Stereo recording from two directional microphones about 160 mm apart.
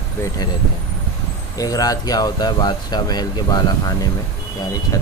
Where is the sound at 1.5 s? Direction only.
20° left (ahead or behind).